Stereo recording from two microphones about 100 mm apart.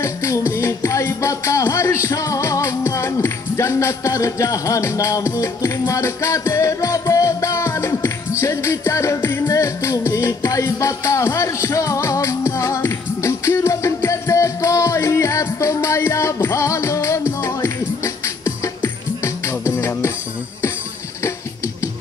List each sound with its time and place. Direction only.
0.0 s music: 30° left (ahead or behind)